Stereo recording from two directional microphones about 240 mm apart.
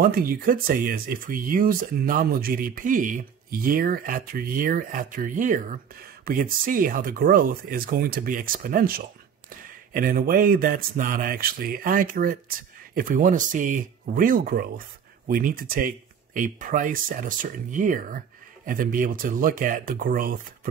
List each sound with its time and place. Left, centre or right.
0.0 s speech: right